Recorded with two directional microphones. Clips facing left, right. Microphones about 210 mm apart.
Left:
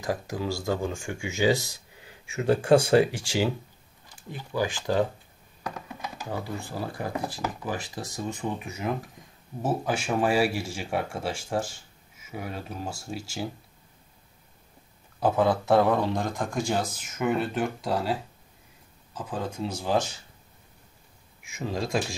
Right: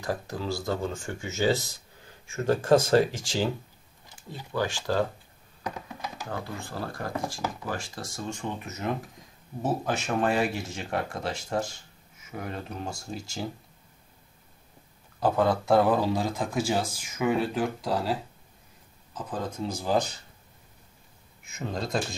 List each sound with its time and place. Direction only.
0.0 s speech: 15° left (ahead or behind)
6.2 s speech: 10° left (ahead or behind)
15.1 s speech: centre (ahead or behind)
19.1 s speech: centre (ahead or behind)
21.4 s speech: 10° left (ahead or behind)